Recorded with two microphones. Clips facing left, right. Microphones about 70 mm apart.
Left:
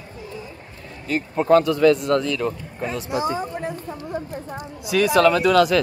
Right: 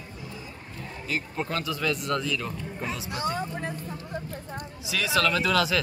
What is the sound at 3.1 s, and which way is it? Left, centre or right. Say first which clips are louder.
Speech: left 6 dB; centre.